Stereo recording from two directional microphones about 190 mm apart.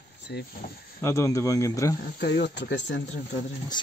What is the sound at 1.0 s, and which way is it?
Speech, 15° left (ahead or behind).